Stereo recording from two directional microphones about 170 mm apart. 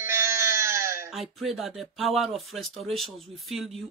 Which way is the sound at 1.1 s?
Centre (ahead or behind).